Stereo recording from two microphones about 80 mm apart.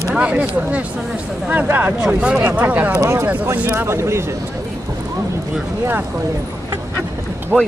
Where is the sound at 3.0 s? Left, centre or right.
Right.